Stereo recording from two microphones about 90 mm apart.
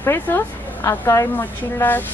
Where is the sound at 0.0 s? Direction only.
25° left (ahead or behind).